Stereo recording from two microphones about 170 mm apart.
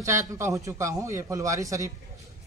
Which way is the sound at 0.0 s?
20° right (ahead or behind).